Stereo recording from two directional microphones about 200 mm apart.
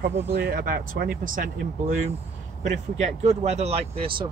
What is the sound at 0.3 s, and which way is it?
Speech, 50° right (ahead or behind).